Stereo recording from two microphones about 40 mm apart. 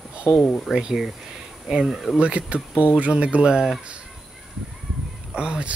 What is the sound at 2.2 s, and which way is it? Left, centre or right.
Speech, right.